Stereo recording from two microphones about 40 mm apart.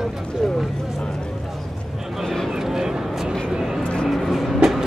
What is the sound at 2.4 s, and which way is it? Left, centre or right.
Speech, centre.